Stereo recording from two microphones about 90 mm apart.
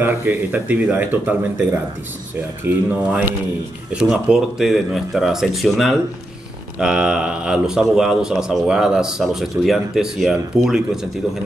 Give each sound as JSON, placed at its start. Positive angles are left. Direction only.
{"t": 0.0, "sound": "a man's voice", "side_deg": -20}